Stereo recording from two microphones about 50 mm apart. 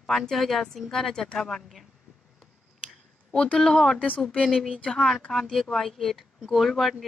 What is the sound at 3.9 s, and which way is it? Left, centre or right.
Speech, left.